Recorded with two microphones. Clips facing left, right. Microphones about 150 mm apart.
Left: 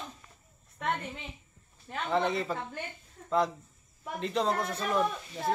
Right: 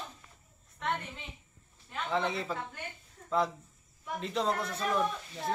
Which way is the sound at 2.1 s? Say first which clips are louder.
Left 3 dB; centre (ahead or behind).